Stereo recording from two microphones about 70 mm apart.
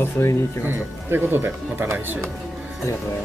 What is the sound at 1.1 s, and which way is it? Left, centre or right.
Speech, right.